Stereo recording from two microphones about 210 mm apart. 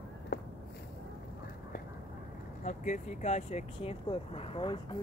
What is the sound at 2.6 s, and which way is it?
Speech, 35° left (ahead or behind).